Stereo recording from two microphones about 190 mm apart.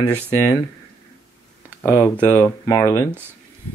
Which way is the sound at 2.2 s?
15° left (ahead or behind).